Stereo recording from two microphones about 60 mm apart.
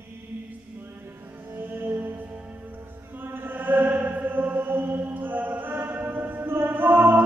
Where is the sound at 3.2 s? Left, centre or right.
Right.